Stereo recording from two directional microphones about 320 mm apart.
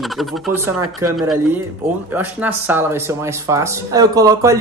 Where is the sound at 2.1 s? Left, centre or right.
Centre.